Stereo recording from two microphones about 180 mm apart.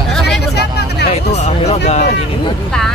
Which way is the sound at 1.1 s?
35° left (ahead or behind).